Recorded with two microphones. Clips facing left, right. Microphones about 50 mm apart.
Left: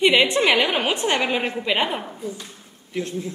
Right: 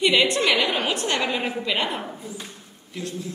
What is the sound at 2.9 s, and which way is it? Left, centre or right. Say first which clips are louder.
Speech: left 4 dB; left.